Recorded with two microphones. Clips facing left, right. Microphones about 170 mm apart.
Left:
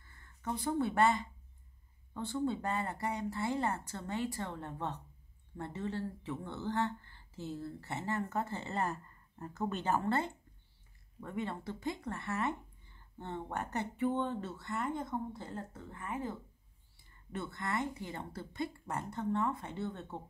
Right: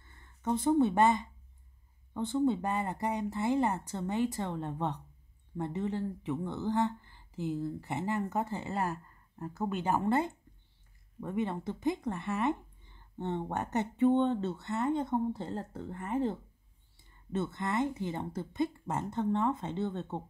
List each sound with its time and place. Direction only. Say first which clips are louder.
0.0 s speech: right 5 dB; 20° right (ahead or behind)
17.3 s speech: right 5 dB; 20° right (ahead or behind)